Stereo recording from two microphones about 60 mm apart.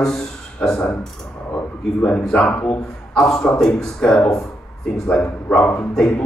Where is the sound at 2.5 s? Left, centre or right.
Left.